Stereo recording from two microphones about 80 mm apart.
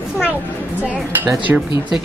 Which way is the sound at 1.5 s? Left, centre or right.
Right.